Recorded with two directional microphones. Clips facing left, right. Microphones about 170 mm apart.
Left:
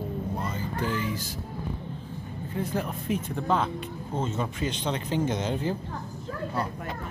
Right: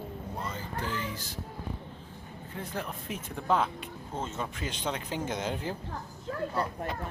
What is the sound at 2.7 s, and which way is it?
Speech, centre (ahead or behind).